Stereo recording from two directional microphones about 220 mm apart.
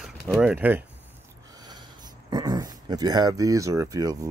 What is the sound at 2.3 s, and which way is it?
Speech, 15° right (ahead or behind).